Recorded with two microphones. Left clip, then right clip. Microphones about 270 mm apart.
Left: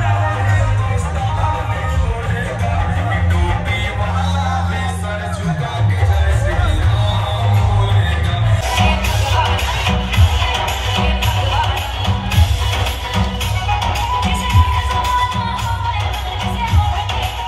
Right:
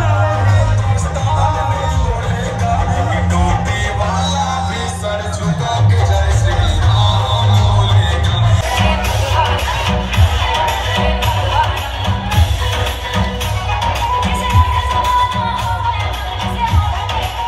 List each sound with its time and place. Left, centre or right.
8.7 s music: centre
13.8 s music: centre